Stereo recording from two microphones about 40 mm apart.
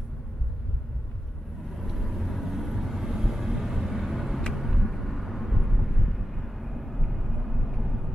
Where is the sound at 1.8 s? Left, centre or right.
Centre.